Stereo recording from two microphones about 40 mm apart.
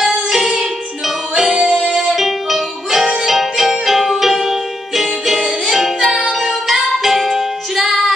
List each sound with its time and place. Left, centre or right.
0.0 s music: centre
2.1 s music: centre